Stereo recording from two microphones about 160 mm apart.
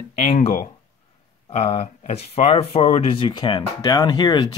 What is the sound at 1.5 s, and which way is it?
Speech, 40° left (ahead or behind).